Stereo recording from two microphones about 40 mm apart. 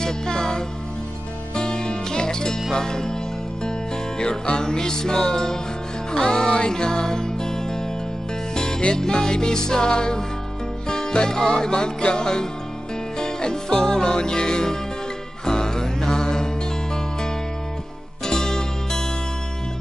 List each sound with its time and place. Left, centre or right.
0.0 s music: centre